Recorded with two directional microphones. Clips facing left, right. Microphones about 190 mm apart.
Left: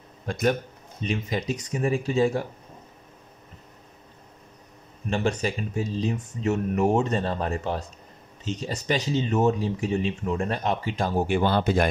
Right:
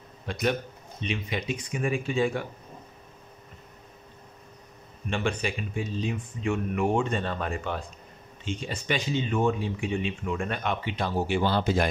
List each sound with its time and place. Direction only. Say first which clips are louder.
0.3 s speech: left 3 dB; 45° left (ahead or behind)
5.1 s speech: left 3 dB; 40° left (ahead or behind); by 11.9 s 55° left (ahead or behind)